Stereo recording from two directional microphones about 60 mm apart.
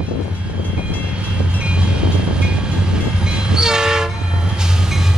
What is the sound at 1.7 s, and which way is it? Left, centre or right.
Vehicle, centre.